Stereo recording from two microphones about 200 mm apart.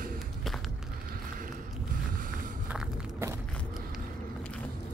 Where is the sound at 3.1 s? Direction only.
15° right (ahead or behind).